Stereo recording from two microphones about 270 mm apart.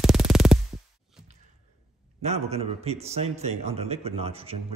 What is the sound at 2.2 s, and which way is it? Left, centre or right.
A man's voice, right.